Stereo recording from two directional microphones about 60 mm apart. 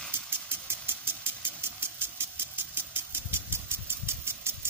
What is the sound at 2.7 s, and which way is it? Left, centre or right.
Vehicle, right.